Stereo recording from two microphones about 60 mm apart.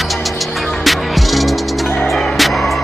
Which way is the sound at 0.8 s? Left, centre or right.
Centre.